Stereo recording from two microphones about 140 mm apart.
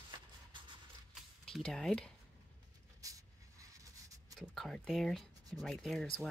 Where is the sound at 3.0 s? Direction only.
25° right (ahead or behind).